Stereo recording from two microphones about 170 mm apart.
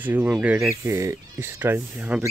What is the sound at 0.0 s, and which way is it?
Speech, 10° right (ahead or behind).